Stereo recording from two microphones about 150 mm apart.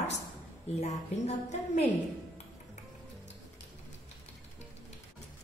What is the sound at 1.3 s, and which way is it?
Speech, 45° left (ahead or behind).